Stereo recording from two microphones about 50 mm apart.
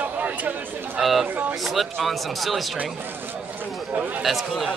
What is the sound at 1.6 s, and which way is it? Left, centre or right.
Speech, centre.